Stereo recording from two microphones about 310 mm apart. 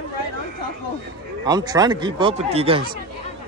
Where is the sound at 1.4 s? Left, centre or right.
Centre.